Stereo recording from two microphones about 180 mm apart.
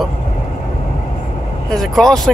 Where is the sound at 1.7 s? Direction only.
Centre (ahead or behind).